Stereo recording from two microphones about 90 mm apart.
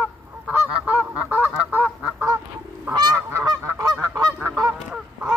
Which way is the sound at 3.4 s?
45° right (ahead or behind).